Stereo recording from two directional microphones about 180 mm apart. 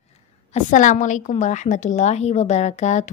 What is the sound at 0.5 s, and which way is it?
A woman's voice, 40° left (ahead or behind).